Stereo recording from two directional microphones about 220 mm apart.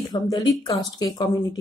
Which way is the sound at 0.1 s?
20° left (ahead or behind).